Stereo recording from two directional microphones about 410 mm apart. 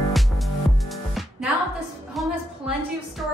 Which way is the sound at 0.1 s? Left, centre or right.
Centre.